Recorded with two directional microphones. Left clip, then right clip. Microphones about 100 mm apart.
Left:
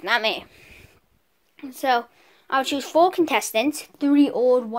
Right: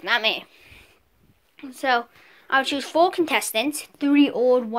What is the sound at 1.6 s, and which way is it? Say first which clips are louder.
A woman's voice: even; 30° left (ahead or behind).